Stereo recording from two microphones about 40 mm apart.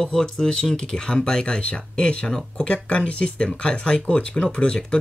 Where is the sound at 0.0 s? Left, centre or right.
Centre.